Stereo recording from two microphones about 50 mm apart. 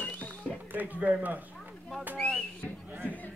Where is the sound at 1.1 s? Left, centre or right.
Right.